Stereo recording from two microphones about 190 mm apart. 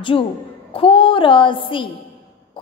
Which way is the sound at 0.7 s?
30° left (ahead or behind).